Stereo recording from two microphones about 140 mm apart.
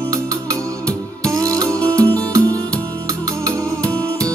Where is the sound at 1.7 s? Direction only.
10° left (ahead or behind).